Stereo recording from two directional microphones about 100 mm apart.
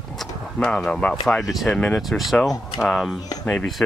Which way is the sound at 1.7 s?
10° left (ahead or behind).